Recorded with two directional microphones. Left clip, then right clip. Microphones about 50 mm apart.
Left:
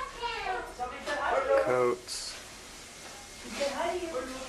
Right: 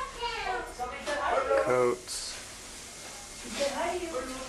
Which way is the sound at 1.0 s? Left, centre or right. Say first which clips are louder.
Right 1 dB; centre.